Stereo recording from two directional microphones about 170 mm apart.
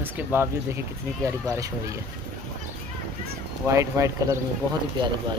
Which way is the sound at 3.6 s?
15° right (ahead or behind).